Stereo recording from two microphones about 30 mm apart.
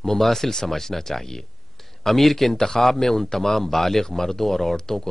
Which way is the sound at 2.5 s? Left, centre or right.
Centre.